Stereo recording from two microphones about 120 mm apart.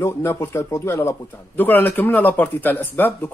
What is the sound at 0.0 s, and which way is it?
Speech, 20° left (ahead or behind).